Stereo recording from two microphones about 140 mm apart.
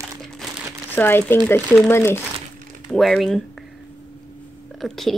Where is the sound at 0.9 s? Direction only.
15° left (ahead or behind).